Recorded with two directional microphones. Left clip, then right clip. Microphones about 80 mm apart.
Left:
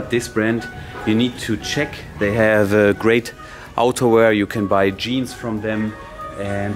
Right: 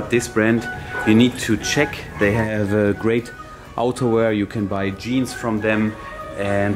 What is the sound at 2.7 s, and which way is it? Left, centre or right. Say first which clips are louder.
Speech: left 4 dB; left.